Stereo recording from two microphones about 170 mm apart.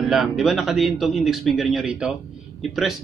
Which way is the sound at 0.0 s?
Centre (ahead or behind).